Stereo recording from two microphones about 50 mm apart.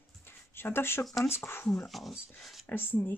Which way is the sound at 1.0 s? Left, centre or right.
Centre.